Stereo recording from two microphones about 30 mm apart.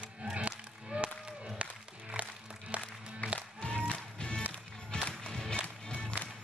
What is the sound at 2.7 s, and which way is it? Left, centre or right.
Music, right.